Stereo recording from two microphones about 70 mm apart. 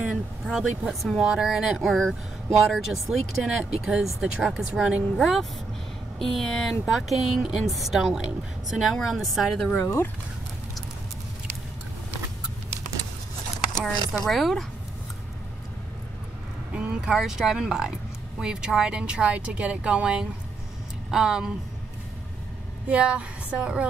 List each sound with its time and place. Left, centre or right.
0.0 s speech: centre
9.8 s speech: left
14.2 s speech: centre
16.7 s speech: centre
22.8 s speech: centre